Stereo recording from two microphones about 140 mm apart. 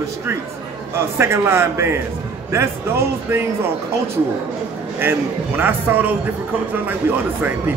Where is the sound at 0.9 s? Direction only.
20° right (ahead or behind).